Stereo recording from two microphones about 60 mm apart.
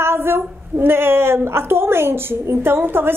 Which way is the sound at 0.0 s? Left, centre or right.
Right.